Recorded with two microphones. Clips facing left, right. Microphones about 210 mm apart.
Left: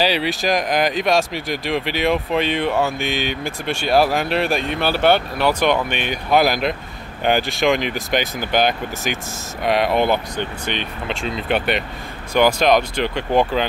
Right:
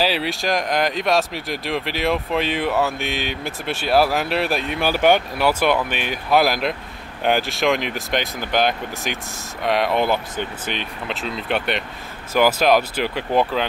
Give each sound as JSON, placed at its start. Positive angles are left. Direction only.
{"t": 0.0, "sound": "speech", "side_deg": 0}